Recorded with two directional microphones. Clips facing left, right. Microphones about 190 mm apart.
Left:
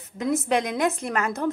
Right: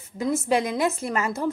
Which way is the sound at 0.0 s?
Centre (ahead or behind).